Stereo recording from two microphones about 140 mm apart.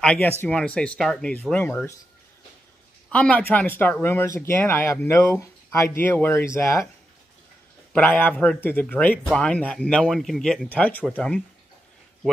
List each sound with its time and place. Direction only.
0.0 s speech: 5° left (ahead or behind)
3.1 s speech: 10° left (ahead or behind)
7.9 s speech: 15° left (ahead or behind)